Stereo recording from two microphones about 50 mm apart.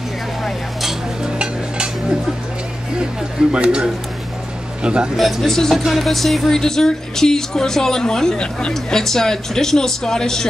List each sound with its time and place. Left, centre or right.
1.2 s a sound: centre
3.5 s a man's voice: right
5.1 s speech: centre
8.7 s speech: centre